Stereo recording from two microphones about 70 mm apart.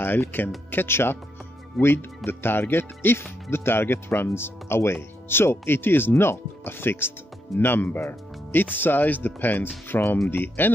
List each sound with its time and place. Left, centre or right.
0.0 s speech: left